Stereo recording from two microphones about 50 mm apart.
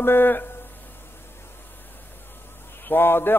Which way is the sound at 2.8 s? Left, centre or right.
Left.